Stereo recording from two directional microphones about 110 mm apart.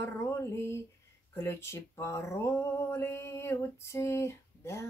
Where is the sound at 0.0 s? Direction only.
25° left (ahead or behind).